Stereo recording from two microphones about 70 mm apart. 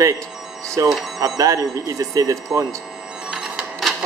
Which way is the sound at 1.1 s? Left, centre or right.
Right.